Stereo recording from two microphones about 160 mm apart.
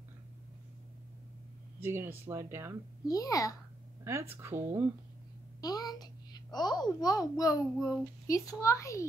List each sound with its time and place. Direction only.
1.8 s speech: 15° right (ahead or behind)
3.1 s a child's voice: 20° left (ahead or behind)
4.0 s speech: 15° right (ahead or behind)
5.6 s a child's voice: 25° left (ahead or behind)